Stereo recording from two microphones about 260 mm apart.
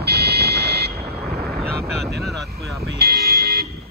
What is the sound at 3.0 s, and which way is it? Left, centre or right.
Music, right.